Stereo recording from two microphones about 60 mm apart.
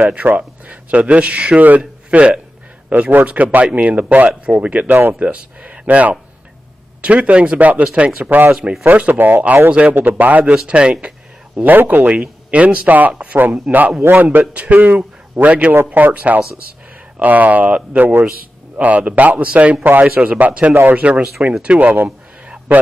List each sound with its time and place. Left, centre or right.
0.0 s a man's voice: right
2.9 s a man's voice: right
9.9 s speech: right
10.5 s speech: centre
11.5 s a man's voice: right